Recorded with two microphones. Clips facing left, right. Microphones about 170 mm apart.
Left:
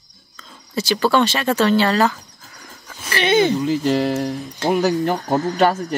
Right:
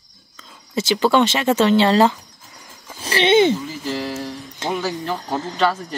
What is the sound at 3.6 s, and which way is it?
Speech, 70° left (ahead or behind).